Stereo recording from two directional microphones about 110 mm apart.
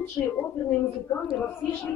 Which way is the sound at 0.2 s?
25° left (ahead or behind).